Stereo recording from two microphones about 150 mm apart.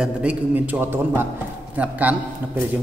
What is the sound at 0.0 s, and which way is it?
A man's voice, 10° right (ahead or behind).